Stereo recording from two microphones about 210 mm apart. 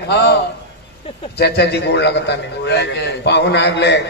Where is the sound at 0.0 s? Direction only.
55° left (ahead or behind).